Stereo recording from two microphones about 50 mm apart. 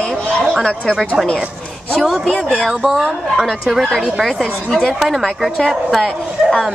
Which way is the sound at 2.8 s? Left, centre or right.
Centre.